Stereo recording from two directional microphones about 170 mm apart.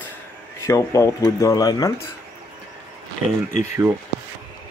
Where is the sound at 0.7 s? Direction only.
20° left (ahead or behind).